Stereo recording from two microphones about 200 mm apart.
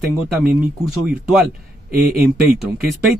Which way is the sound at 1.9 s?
45° right (ahead or behind).